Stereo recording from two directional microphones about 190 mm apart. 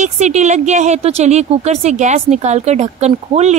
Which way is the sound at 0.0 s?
35° right (ahead or behind).